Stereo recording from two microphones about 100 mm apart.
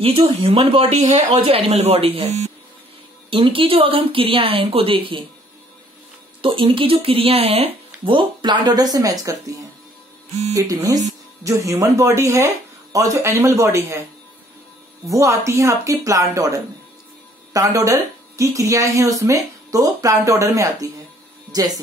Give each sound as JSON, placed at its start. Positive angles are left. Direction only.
{"t": 0.2, "sound": "speech", "side_deg": -60}
{"t": 3.3, "sound": "speech", "side_deg": -65}
{"t": 6.4, "sound": "speech", "side_deg": -60}
{"t": 15.0, "sound": "speech", "side_deg": -30}